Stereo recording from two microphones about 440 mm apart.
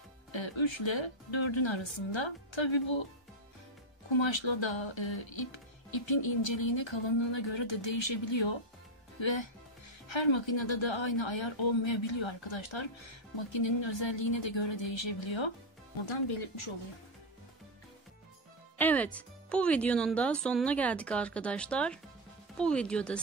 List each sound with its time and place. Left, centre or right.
0.3 s a woman's voice: left
4.1 s a woman's voice: left
18.8 s speech: centre